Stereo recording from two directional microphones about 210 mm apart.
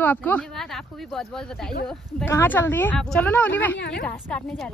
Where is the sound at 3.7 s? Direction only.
55° left (ahead or behind).